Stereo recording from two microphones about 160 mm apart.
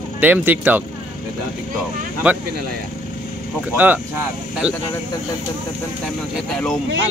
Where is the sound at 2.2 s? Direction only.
10° right (ahead or behind).